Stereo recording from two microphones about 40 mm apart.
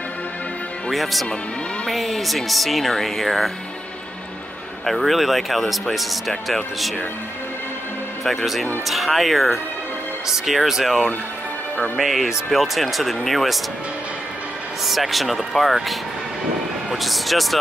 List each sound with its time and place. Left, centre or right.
0.9 s speech: centre
4.8 s speech: centre
8.2 s speech: centre
8.8 s speech: centre
12.0 s speech: centre
14.9 s speech: centre